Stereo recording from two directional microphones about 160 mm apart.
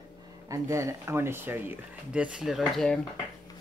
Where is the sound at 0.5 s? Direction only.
20° right (ahead or behind).